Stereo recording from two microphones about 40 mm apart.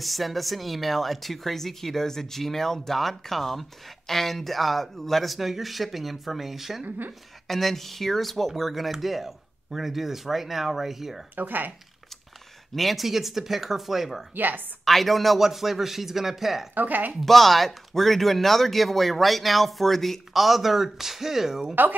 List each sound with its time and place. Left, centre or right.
0.0 s speech: centre
11.3 s speech: right
12.7 s speech: centre
14.3 s speech: right
14.9 s speech: centre
16.7 s speech: right
17.2 s speech: centre